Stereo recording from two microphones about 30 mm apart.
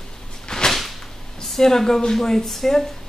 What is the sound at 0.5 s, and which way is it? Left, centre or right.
Whip, left.